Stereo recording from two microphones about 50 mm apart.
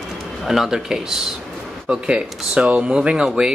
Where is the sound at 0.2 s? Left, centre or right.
Centre.